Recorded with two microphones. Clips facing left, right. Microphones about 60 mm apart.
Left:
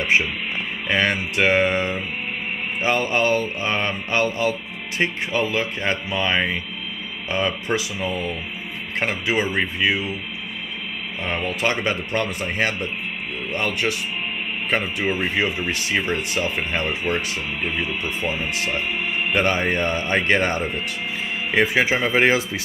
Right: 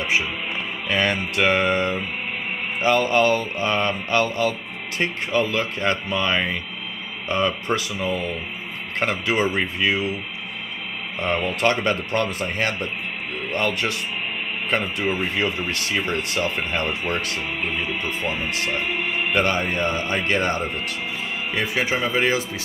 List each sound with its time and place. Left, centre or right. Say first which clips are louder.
0.0 s music: left 3 dB; left
0.8 s mantra: left 1 dB; left
6.0 s speech: left 1 dB; centre
7.7 s speech: even; centre
11.1 s speech: right 2 dB; centre
14.7 s speech: left 1 dB; centre
19.3 s mantra: left 1 dB; left
19.6 s speech: left 1 dB; left
22.1 s mantra: left 4 dB; left